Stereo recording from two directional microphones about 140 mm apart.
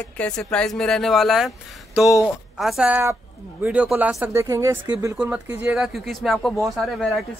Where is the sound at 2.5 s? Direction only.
5° right (ahead or behind); by 4.7 s 20° right (ahead or behind).